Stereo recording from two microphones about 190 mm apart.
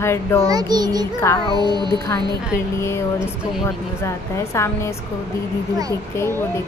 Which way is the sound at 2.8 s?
15° left (ahead or behind).